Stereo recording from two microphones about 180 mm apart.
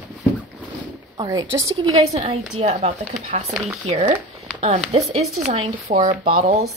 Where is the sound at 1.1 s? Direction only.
25° right (ahead or behind).